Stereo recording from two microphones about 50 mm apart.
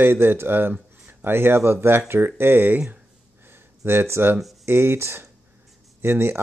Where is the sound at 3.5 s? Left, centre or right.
Right.